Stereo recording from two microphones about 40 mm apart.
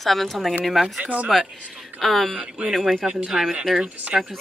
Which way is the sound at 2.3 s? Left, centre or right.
Right.